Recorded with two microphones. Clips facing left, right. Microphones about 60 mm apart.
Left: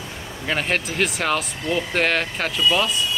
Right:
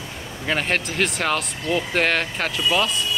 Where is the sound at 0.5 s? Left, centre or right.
Centre.